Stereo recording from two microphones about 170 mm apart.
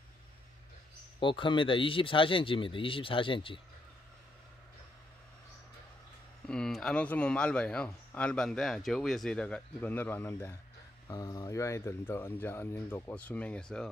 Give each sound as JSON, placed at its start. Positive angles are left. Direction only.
{"t": 1.2, "sound": "speech", "side_deg": 30}
{"t": 6.4, "sound": "speech", "side_deg": 5}